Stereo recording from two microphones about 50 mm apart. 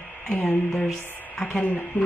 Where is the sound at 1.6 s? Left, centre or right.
Left.